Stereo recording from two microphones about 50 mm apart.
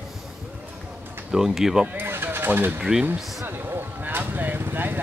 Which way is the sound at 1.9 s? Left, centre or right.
Right.